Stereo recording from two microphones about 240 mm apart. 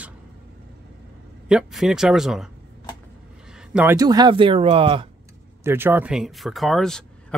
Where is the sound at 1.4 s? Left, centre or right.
Centre.